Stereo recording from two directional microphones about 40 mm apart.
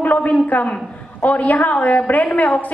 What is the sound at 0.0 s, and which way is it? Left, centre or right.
A woman's voice, left.